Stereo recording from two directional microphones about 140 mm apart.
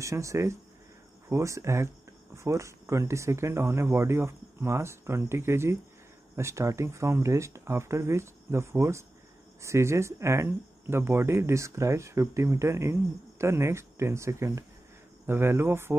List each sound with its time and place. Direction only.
0.0 s speech: 20° right (ahead or behind)